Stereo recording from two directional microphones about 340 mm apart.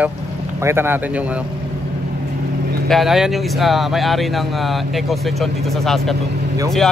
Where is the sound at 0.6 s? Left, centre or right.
Centre.